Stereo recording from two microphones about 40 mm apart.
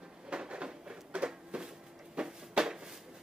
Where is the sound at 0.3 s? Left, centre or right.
Right.